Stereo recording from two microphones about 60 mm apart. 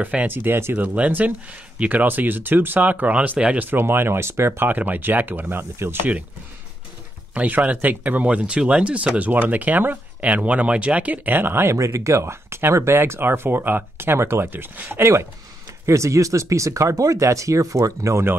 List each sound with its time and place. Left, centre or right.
0.0 s speech: right
0.3 s speech: right
0.8 s speech: right
3.6 s speech: right
4.6 s speech: right
7.3 s speech: right
11.7 s speech: right
15.8 s speech: right